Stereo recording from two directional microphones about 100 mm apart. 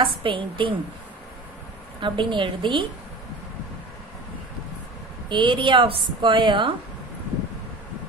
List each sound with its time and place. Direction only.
0.0 s a woman's voice: 55° right (ahead or behind)
2.0 s a woman's voice: 55° right (ahead or behind)
5.3 s a woman's voice: 50° right (ahead or behind)